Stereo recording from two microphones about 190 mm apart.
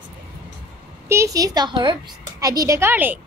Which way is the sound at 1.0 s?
15° right (ahead or behind).